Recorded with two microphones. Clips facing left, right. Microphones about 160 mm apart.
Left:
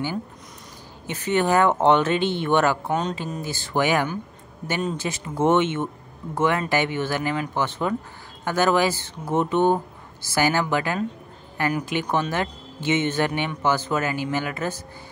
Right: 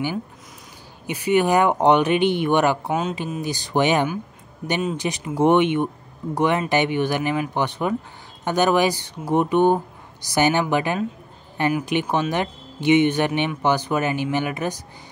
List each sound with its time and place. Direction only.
1.0 s a woman's voice: 10° right (ahead or behind)